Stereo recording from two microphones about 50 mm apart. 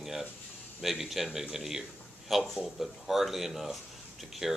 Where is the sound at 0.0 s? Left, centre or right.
Centre.